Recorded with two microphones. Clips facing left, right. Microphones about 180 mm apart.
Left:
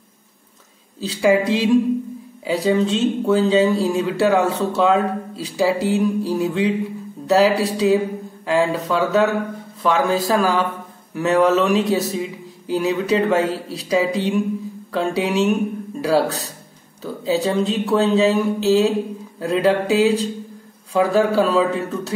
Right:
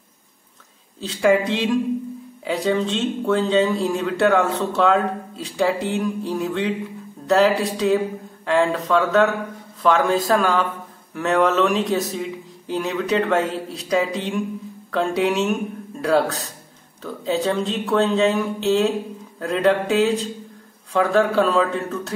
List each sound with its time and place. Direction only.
1.0 s speech: 5° left (ahead or behind)